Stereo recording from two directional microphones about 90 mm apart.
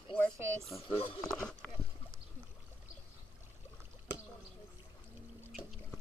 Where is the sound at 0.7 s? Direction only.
90° left.